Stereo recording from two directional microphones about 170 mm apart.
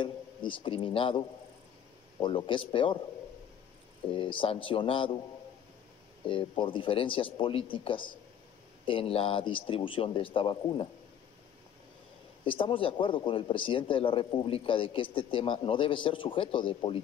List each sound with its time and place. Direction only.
0.0 s a man's voice: 30° left (ahead or behind)
4.1 s speech: 30° left (ahead or behind)
6.2 s speech: 30° left (ahead or behind)
12.4 s speech: 30° left (ahead or behind)